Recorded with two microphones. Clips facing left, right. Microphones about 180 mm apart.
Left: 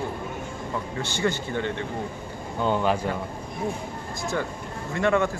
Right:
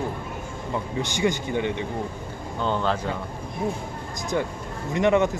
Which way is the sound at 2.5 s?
15° left (ahead or behind).